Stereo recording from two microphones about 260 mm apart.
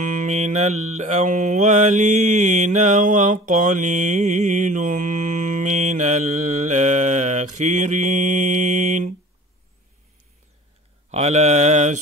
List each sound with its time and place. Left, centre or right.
0.0 s mantra: right
11.1 s mantra: right